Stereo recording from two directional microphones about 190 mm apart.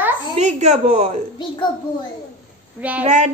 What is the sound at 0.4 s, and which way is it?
Speech, 35° right (ahead or behind).